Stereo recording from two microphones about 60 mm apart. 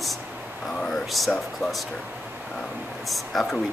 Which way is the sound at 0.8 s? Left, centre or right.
Centre.